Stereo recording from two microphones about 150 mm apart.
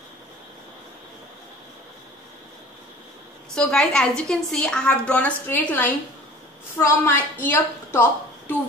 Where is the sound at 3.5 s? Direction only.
5° left (ahead or behind).